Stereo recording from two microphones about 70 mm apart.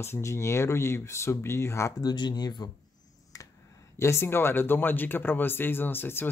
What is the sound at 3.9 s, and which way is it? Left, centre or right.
Speech, left.